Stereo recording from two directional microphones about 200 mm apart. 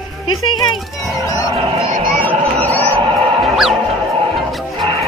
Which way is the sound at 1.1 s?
15° left (ahead or behind).